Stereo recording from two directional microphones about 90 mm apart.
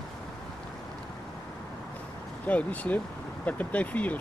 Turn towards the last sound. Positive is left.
turn(degrees=15)  # may be behind; listen again after turning